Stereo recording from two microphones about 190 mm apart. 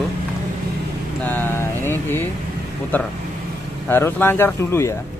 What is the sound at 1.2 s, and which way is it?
Speech, 10° left (ahead or behind).